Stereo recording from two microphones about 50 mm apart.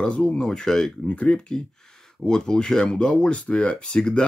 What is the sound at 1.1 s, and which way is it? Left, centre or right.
Speech, left.